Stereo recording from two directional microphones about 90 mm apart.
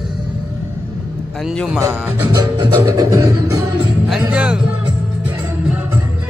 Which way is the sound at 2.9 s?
35° right (ahead or behind).